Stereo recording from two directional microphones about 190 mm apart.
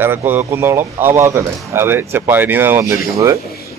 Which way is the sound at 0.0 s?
10° right (ahead or behind).